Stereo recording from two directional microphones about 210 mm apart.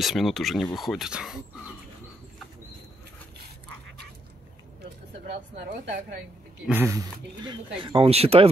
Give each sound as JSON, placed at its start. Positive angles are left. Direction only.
{"t": 0.0, "sound": "speech", "side_deg": 0}
{"t": 5.3, "sound": "a sound", "side_deg": -40}
{"t": 6.7, "sound": "speech", "side_deg": -15}